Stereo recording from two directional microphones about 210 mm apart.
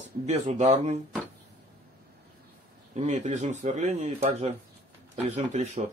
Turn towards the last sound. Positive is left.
turn(degrees=-35)  # may be behind; listen again after turning